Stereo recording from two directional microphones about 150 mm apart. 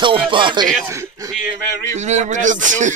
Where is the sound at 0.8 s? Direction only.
20° right (ahead or behind).